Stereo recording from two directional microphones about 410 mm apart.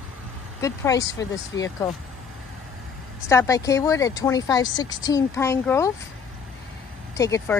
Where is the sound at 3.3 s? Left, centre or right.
Centre.